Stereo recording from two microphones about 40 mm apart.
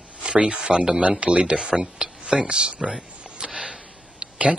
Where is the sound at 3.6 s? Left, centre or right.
Right.